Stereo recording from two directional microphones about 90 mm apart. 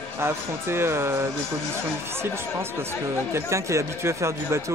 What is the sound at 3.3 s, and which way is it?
Speech, 35° right (ahead or behind).